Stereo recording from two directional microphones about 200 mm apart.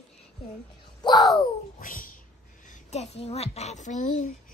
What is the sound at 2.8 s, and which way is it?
A woman's voice, 30° left (ahead or behind).